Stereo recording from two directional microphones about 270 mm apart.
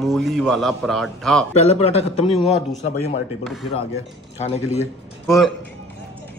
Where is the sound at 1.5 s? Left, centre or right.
Left.